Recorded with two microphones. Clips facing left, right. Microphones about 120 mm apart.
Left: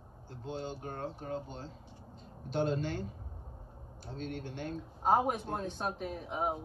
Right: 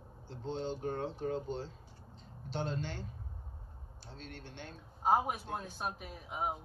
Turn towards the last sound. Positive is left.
turn(degrees=0)  # may be behind; listen again after turning